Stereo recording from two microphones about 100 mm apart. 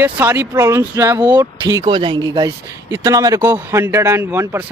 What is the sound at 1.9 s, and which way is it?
Speech, 55° right (ahead or behind).